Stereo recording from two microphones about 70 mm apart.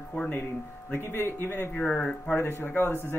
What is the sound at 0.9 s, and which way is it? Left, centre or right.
Speech, left.